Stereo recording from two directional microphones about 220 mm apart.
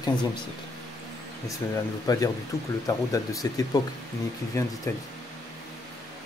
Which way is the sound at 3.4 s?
15° left (ahead or behind).